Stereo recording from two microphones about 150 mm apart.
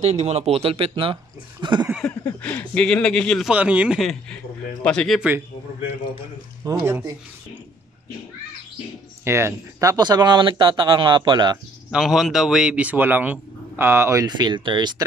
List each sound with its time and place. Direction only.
0.0 s speech: 45° right (ahead or behind); by 1.9 s 30° right (ahead or behind)
1.9 s a sound: centre (ahead or behind)
2.2 s speech: 10° left (ahead or behind)
3.5 s speech: 10° right (ahead or behind)
6.6 s speech: 20° right (ahead or behind)
9.2 s speech: 15° right (ahead or behind)
11.9 s speech: 5° right (ahead or behind); by 15.0 s 30° right (ahead or behind)